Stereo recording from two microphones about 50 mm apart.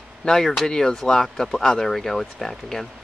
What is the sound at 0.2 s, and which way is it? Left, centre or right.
Speech, centre.